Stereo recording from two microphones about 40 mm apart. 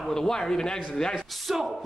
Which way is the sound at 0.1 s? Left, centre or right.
Centre.